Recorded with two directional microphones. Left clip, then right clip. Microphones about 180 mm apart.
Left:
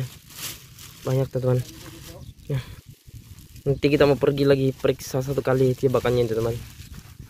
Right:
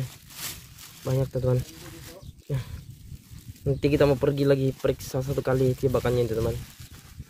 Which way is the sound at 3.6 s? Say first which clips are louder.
Left 3 dB; centre (ahead or behind).